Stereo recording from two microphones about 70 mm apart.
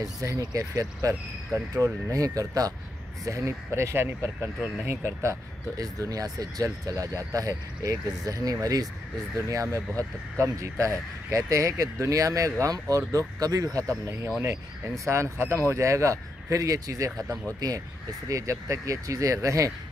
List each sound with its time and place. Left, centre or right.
0.0 s speech: right
3.3 s speech: right
10.3 s speech: right
13.7 s speech: right
17.6 s speech: right
18.3 s speech: right